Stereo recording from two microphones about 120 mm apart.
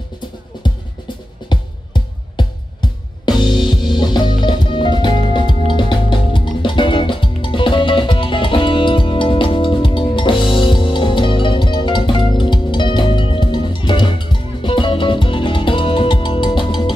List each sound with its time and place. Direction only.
1.5 s music: 40° left (ahead or behind)